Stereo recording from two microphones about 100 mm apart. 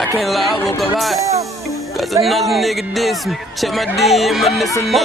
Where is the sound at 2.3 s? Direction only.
Centre (ahead or behind).